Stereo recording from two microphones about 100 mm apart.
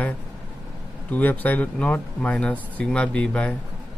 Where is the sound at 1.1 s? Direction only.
15° left (ahead or behind).